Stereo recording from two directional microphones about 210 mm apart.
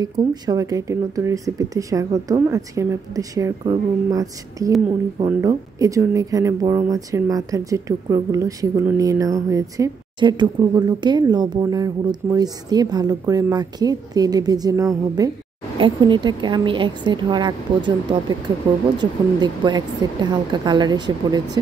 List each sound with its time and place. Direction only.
0.0 s a woman's voice: 20° right (ahead or behind)
18.9 s speech: 20° right (ahead or behind)